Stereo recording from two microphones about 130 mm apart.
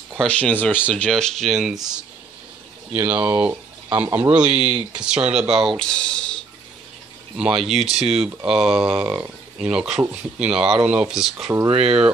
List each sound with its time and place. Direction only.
0.2 s speech: 10° left (ahead or behind)
2.9 s speech: 10° right (ahead or behind); by 6.3 s 10° left (ahead or behind)
7.3 s speech: 5° right (ahead or behind)
11.7 s speech: 50° right (ahead or behind)